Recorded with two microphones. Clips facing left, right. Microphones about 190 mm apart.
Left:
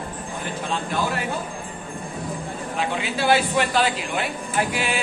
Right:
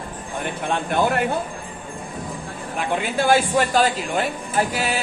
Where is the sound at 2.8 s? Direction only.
50° right (ahead or behind).